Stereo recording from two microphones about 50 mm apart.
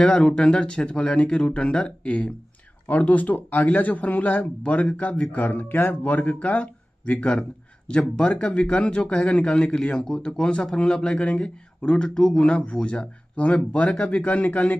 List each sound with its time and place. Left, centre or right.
0.0 s a man's voice: left
12.7 s a man's voice: left